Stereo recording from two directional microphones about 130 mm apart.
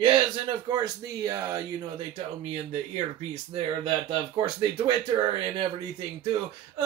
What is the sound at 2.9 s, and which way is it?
Speech, 50° right (ahead or behind).